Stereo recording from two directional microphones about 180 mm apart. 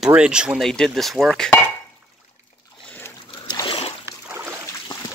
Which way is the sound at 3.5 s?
25° left (ahead or behind).